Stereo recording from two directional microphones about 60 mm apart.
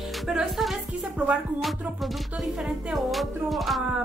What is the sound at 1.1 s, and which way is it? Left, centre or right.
Speech, right.